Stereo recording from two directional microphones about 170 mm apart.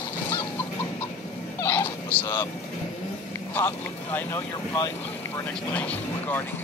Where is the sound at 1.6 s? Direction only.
10° left (ahead or behind).